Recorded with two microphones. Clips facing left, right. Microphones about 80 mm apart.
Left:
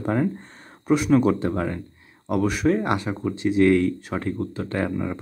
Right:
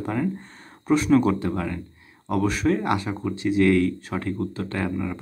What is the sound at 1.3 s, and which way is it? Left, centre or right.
Speech, left.